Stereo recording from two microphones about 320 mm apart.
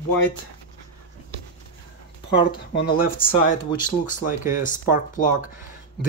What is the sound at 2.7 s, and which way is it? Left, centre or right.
Speech, left.